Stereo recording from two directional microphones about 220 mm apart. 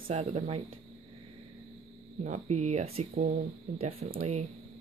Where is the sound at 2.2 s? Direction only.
30° right (ahead or behind).